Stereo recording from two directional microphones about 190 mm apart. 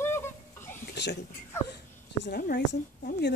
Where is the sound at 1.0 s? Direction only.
65° left (ahead or behind).